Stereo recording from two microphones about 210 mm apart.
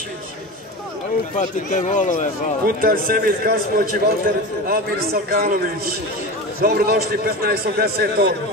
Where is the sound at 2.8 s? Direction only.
45° right (ahead or behind).